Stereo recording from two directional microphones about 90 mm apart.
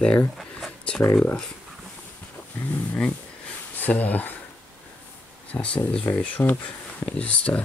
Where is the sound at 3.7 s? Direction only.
20° left (ahead or behind).